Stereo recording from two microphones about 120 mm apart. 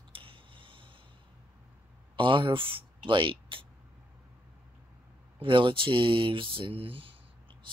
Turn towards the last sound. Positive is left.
turn(degrees=-50)  # may be behind; listen again after turning